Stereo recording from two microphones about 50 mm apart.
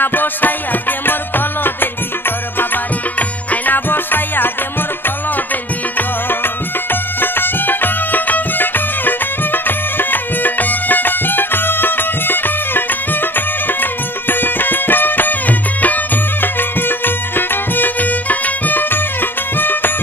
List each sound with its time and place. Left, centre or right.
0.0 s music: left
5.9 s music: left